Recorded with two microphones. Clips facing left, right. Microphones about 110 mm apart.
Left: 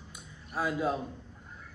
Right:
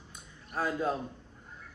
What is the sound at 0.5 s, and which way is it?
Speech, 5° left (ahead or behind).